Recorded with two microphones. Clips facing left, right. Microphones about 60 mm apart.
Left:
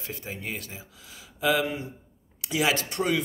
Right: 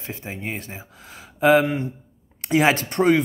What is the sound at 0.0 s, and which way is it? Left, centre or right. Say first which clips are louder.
Speech: right 4 dB; right.